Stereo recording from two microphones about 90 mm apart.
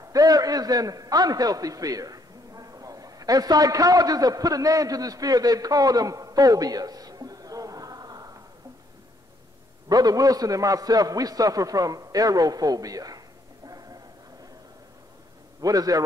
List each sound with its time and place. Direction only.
0.0 s a man's voice: 40° right (ahead or behind)
9.8 s a man's voice: 45° right (ahead or behind)
13.7 s a sound: 45° right (ahead or behind)
15.6 s a man's voice: 40° right (ahead or behind)